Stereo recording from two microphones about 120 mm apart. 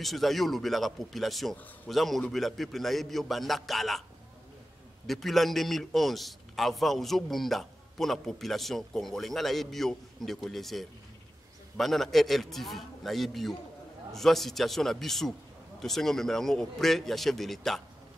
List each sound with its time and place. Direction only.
0.0 s a man's voice: centre (ahead or behind)
5.0 s a man's voice: centre (ahead or behind)